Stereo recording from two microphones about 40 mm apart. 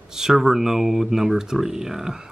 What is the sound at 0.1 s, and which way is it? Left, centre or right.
Speech, centre.